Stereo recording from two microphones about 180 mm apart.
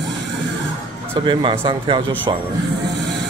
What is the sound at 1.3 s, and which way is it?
Speech, 25° right (ahead or behind).